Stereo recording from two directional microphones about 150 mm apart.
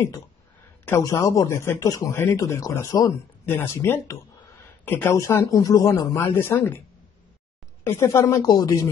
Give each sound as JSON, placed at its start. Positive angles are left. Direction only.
{"t": 0.8, "sound": "speech", "side_deg": 20}
{"t": 7.8, "sound": "speech", "side_deg": 15}